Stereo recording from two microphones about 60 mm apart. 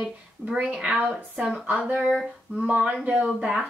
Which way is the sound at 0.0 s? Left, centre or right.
Right.